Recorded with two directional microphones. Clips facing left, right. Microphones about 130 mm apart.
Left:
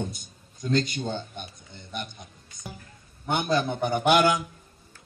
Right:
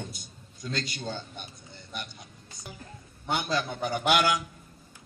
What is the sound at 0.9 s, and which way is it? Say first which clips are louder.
A man's voice: left 5 dB; 20° left (ahead or behind).